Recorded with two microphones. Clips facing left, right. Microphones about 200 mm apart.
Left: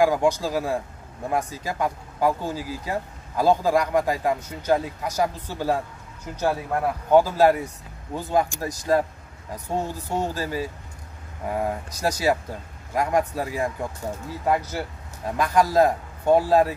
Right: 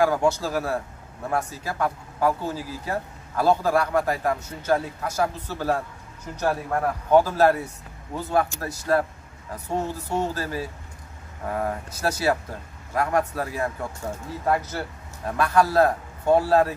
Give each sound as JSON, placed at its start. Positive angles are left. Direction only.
{"t": 0.0, "sound": "speech", "side_deg": 15}